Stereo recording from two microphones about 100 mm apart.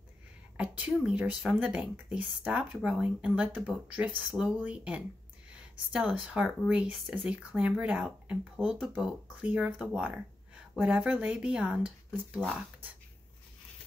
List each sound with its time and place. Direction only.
0.6 s speech: 15° right (ahead or behind)
2.2 s speech: 5° right (ahead or behind)
9.4 s speech: 15° right (ahead or behind)